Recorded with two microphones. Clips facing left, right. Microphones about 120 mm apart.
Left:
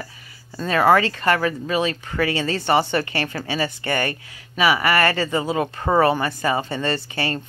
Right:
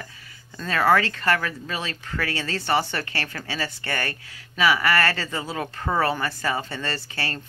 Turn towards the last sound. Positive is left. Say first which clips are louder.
# left 6 dB
turn(degrees=15)  # may be behind; listen again after turning